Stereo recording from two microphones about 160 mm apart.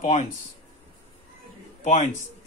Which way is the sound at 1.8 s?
45° left (ahead or behind).